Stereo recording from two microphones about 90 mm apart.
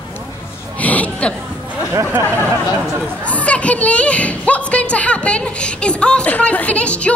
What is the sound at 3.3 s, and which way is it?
A woman's voice, 15° left (ahead or behind).